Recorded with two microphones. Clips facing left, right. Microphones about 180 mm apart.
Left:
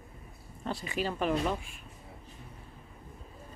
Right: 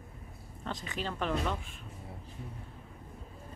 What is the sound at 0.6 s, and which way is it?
Speech, 10° left (ahead or behind).